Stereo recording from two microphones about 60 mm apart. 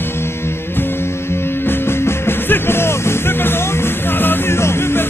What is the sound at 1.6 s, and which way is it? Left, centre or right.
Music, left.